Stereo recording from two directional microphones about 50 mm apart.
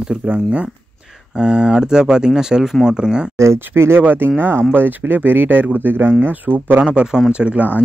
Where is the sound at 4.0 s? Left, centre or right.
Right.